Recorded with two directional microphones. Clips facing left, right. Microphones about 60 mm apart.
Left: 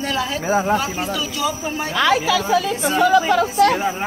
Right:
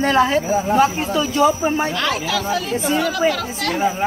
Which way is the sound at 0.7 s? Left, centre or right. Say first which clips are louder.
Right 4 dB; right.